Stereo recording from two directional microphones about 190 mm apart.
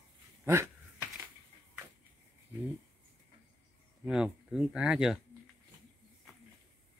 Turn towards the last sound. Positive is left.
turn(degrees=-5)  # may be behind; listen again after turning